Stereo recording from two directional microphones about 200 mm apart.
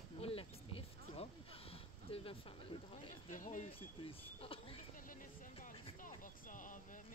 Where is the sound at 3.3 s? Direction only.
40° left (ahead or behind).